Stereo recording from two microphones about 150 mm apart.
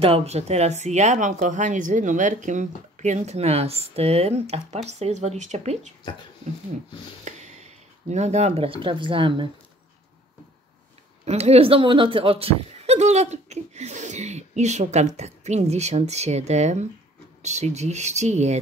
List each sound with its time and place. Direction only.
0.0 s speech: 45° right (ahead or behind)
7.2 s speech: 50° right (ahead or behind); by 9.5 s 35° right (ahead or behind)
11.2 s speech: 45° right (ahead or behind)